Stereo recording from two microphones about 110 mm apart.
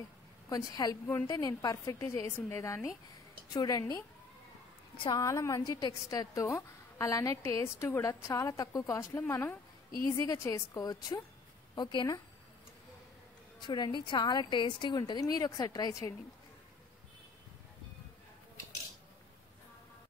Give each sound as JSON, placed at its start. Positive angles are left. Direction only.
{"t": 0.5, "sound": "a woman's voice", "side_deg": 35}
{"t": 4.9, "sound": "a woman's voice", "side_deg": 45}
{"t": 5.2, "sound": "a woman's voice", "side_deg": 30}
{"t": 5.7, "sound": "a woman's voice", "side_deg": 40}
{"t": 6.0, "sound": "a woman's voice", "side_deg": 30}
{"t": 10.1, "sound": "a woman's voice", "side_deg": 30}
{"t": 13.6, "sound": "a woman's voice", "side_deg": 40}